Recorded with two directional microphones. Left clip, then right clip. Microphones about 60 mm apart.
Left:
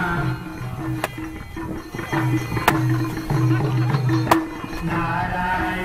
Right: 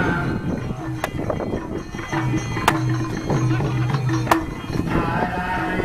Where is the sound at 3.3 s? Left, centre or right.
Right.